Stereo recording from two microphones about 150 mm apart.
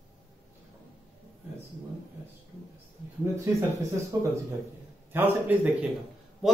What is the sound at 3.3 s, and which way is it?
A man's voice, 20° right (ahead or behind).